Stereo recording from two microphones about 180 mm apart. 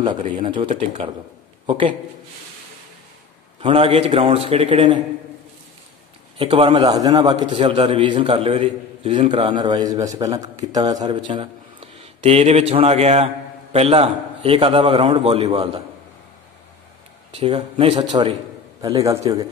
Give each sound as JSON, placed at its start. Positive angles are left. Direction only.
{"t": 0.4, "sound": "a man's voice", "side_deg": -30}
{"t": 3.6, "sound": "a man's voice", "side_deg": -30}
{"t": 6.3, "sound": "a man's voice", "side_deg": -30}
{"t": 17.3, "sound": "a man's voice", "side_deg": -30}
{"t": 18.8, "sound": "a man's voice", "side_deg": -20}